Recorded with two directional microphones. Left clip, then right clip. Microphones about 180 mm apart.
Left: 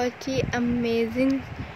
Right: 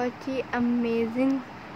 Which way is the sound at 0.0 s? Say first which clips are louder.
Left 3 dB; 5° left (ahead or behind).